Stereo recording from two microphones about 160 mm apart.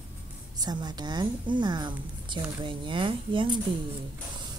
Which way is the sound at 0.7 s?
25° right (ahead or behind).